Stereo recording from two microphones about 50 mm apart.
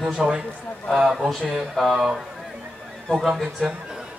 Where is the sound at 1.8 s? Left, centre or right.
Centre.